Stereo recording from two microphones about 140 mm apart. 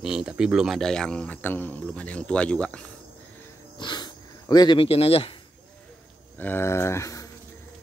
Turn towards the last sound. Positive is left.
turn(degrees=20)  # may be behind; listen again after turning